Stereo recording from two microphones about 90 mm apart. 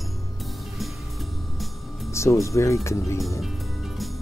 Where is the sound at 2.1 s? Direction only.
35° left (ahead or behind).